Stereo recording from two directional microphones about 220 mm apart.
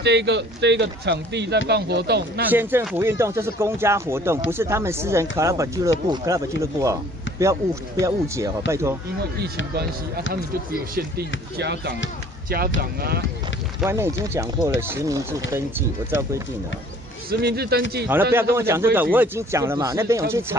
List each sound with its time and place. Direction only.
0.0 s speech: 50° right (ahead or behind)
2.5 s speech: 10° right (ahead or behind)
11.0 s speech: 45° right (ahead or behind)
13.7 s speech: 10° right (ahead or behind)
17.3 s speech: 45° right (ahead or behind)
18.0 s speech: 10° right (ahead or behind)